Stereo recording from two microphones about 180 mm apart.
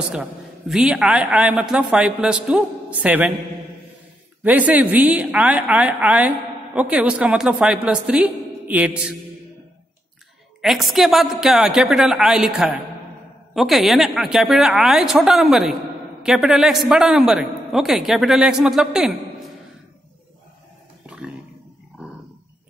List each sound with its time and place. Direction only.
0.1 s a woman's voice: 5° right (ahead or behind)
4.4 s a woman's voice: 10° right (ahead or behind)
10.6 s a man's voice: centre (ahead or behind)